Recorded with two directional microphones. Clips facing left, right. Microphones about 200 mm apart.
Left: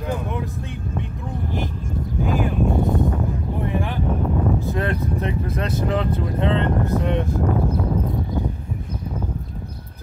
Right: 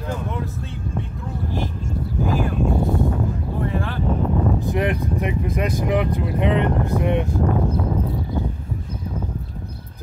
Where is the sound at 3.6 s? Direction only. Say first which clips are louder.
Even; 15° left (ahead or behind).